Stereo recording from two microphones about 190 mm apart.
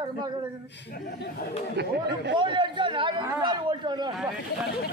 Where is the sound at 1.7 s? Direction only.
60° right (ahead or behind).